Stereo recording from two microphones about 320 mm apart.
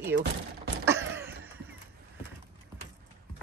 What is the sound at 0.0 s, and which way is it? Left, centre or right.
Speech, right.